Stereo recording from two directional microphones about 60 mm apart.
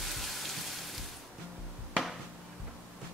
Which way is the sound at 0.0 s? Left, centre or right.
Centre.